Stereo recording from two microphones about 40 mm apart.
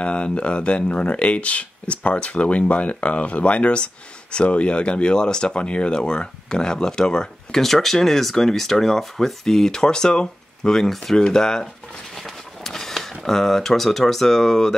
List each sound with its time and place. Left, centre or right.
0.0 s speech: left
7.6 s speech: centre
10.8 s speech: centre
11.1 s speech: centre
12.2 s a sound: centre